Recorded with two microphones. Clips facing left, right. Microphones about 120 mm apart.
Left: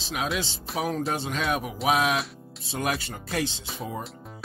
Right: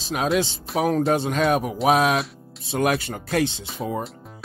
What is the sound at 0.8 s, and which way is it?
Speech, 55° right (ahead or behind).